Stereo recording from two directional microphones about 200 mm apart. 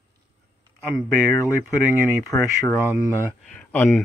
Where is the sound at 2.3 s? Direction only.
15° left (ahead or behind).